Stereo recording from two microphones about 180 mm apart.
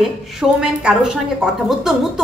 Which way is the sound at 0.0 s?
Centre (ahead or behind).